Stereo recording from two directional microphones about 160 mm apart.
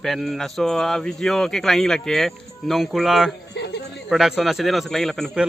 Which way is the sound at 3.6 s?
90° left.